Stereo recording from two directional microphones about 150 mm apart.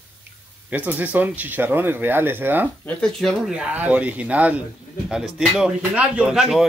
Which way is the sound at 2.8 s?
5° left (ahead or behind).